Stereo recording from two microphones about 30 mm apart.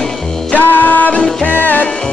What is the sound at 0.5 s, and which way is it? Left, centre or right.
Music, left.